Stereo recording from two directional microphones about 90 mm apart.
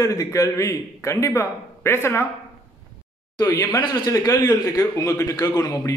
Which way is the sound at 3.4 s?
35° left (ahead or behind).